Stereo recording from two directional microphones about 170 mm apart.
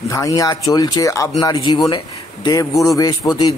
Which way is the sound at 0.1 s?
20° left (ahead or behind).